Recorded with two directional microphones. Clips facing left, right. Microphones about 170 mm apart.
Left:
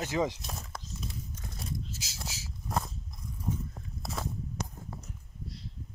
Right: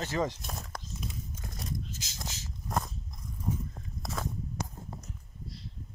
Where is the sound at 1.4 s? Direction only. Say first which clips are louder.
Right 1 dB; 5° left (ahead or behind).